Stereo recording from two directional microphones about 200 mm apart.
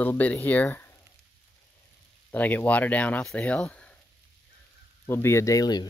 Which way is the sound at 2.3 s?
10° left (ahead or behind).